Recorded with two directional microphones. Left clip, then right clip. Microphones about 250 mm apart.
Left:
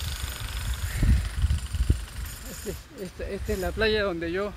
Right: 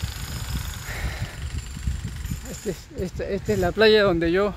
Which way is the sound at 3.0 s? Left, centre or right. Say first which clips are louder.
Right 7 dB; right.